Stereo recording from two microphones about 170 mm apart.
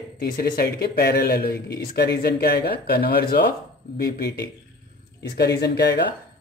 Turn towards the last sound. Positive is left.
turn(degrees=85)